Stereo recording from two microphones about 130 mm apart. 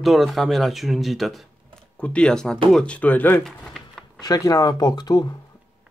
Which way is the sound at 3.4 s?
Centre (ahead or behind).